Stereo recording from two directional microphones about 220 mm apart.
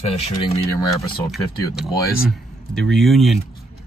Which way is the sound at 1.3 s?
Centre (ahead or behind).